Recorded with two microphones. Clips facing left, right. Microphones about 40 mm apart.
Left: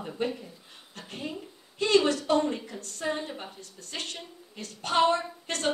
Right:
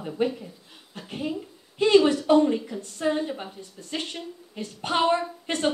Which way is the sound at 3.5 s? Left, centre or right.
Centre.